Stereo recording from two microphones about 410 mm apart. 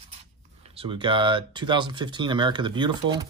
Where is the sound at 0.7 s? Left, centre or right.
Centre.